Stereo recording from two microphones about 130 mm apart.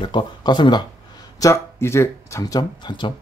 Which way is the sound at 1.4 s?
20° left (ahead or behind).